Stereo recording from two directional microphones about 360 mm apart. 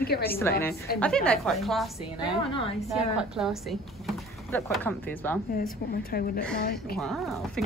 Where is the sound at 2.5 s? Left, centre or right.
Centre.